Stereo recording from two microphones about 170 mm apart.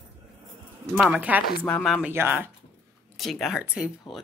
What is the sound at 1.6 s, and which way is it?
Speech, 5° left (ahead or behind).